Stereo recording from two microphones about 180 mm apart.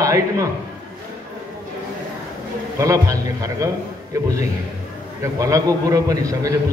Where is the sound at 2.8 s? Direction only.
20° right (ahead or behind).